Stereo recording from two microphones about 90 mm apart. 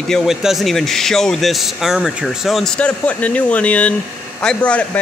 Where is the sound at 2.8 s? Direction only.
15° left (ahead or behind).